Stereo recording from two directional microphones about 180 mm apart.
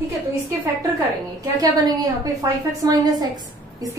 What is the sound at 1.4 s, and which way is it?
A woman's voice, 20° right (ahead or behind).